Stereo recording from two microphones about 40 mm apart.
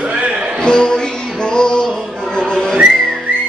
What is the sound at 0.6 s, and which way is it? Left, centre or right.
Music, left.